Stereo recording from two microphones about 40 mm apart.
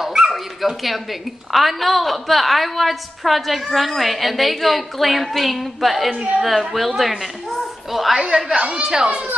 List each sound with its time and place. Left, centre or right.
0.0 s dog: centre
1.5 s a woman's voice: centre
7.0 s a sound: centre
8.1 s a woman's voice: centre
8.5 s speech: right